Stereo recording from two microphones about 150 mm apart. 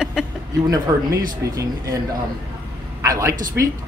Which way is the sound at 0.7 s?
20° right (ahead or behind).